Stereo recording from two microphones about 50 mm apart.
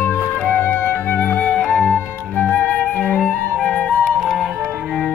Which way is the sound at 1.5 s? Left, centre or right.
Centre.